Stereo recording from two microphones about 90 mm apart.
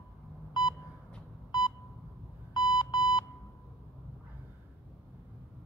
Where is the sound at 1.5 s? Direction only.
50° left (ahead or behind).